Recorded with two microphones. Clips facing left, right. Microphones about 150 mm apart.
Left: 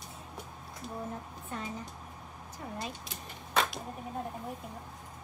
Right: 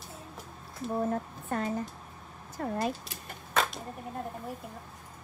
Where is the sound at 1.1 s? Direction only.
55° right (ahead or behind).